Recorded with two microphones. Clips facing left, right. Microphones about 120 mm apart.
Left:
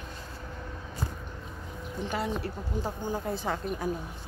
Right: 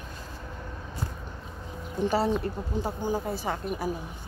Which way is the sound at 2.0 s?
30° right (ahead or behind).